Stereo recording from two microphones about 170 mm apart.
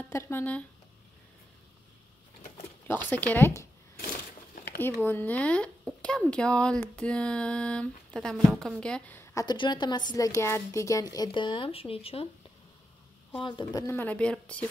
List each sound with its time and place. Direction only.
0.1 s speech: 15° left (ahead or behind)
2.9 s speech: 10° left (ahead or behind)
5.0 s speech: 10° left (ahead or behind); by 12.3 s 35° left (ahead or behind)
13.4 s speech: 30° left (ahead or behind)
13.8 s speech: 10° left (ahead or behind)